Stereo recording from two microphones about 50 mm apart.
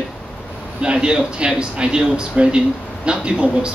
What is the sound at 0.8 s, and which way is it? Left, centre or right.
Speech, centre.